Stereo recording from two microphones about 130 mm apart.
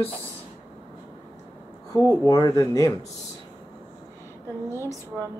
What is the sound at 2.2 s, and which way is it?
Speech, 25° left (ahead or behind).